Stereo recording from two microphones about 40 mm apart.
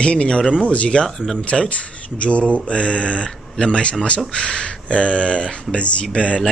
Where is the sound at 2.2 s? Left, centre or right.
Left.